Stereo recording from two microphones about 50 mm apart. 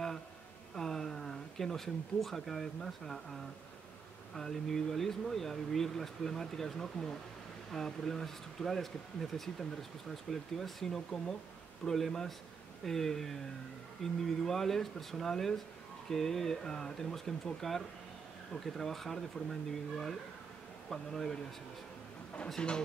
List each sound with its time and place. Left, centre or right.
0.7 s speech: centre
22.6 s speech: centre